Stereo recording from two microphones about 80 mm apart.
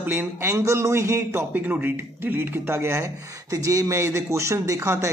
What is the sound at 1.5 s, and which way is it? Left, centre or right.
Speech, right.